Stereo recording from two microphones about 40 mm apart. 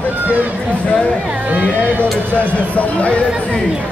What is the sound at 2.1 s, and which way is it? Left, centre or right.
Speech, left.